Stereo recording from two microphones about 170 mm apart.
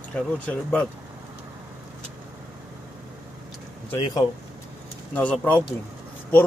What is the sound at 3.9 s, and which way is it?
Speech, 30° left (ahead or behind).